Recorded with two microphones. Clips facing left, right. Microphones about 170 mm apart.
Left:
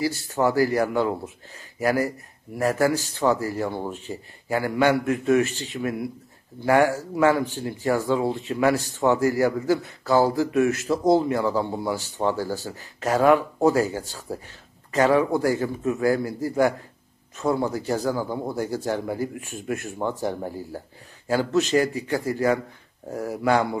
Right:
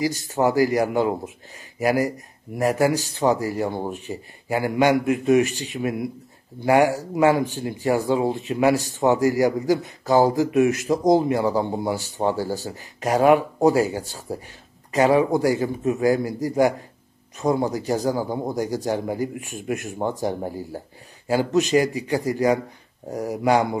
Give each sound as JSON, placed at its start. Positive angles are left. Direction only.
{"t": 0.4, "sound": "a man's voice", "side_deg": -15}